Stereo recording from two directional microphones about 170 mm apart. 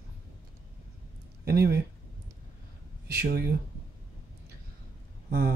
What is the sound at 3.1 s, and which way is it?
Speech, 65° right (ahead or behind).